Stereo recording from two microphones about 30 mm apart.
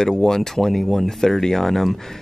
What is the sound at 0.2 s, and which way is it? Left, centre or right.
Speech, centre.